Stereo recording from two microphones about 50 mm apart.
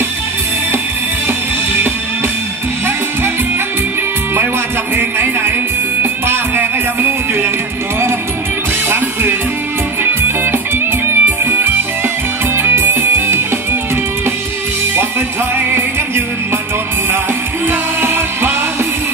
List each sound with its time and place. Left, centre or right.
4.9 s a sound: right
6.2 s music: right
8.8 s music: right
17.6 s music: right